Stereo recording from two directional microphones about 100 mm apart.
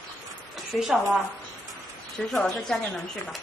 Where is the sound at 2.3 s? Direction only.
Centre (ahead or behind).